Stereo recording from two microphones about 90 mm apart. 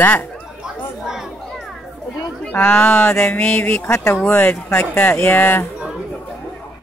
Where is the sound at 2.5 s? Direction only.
15° left (ahead or behind).